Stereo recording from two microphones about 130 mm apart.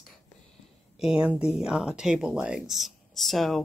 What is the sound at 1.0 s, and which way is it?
Speech, 5° right (ahead or behind).